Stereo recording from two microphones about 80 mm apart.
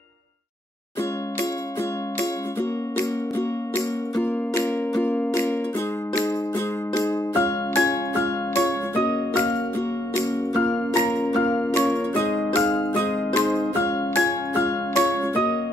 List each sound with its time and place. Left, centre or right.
3.0 s music: left
7.0 s music: left
11.0 s music: left
13.6 s music: left